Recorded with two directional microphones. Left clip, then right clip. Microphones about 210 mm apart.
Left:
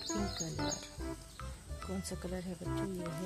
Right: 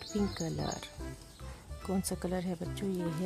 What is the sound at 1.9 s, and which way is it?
Speech, 30° right (ahead or behind).